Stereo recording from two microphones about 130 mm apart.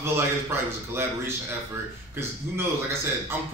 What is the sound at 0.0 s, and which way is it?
A man's voice, 20° right (ahead or behind).